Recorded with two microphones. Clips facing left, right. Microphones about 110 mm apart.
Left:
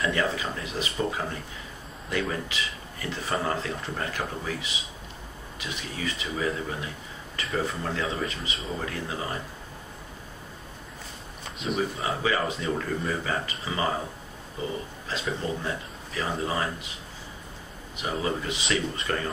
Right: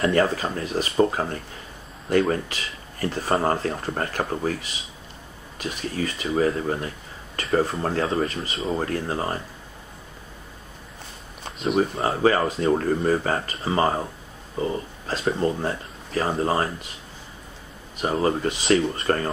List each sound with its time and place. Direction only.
0.1 s speech: 45° right (ahead or behind)
11.6 s speech: 40° right (ahead or behind)
18.0 s speech: 45° right (ahead or behind)